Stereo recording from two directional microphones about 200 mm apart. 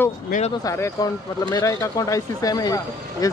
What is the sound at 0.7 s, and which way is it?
Speech, 15° left (ahead or behind).